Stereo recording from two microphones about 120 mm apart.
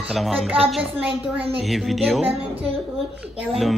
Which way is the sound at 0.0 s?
Centre (ahead or behind).